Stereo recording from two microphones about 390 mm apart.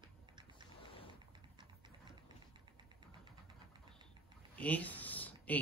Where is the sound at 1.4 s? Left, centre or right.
Centre.